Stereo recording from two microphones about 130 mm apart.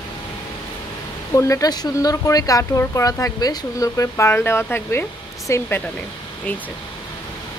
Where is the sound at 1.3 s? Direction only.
25° left (ahead or behind).